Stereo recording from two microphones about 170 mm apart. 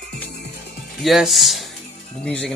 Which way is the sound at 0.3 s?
80° left.